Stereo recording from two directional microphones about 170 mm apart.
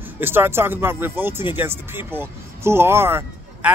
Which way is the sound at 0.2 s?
15° right (ahead or behind).